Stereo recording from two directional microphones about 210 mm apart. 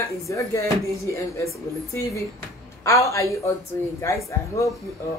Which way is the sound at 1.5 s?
15° left (ahead or behind).